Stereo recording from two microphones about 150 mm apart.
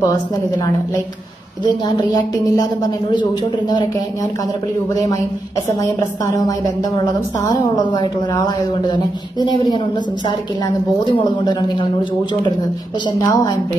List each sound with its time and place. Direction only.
1.6 s a woman's voice: 25° left (ahead or behind)
5.8 s a woman's voice: 20° left (ahead or behind)
11.1 s speech: 30° left (ahead or behind)
13.2 s a woman's voice: 20° left (ahead or behind)